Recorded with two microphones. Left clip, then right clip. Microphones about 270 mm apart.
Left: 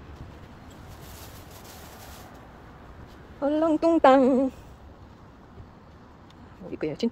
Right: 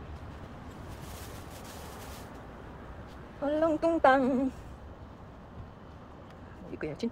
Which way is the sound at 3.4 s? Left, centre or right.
Left.